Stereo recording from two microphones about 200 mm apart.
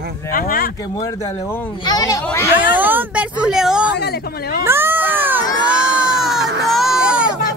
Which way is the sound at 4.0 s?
55° left (ahead or behind).